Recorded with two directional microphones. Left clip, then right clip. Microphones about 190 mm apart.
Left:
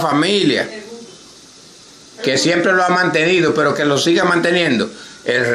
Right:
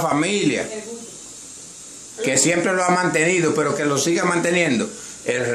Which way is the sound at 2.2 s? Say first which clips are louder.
Left 4 dB; 5° left (ahead or behind).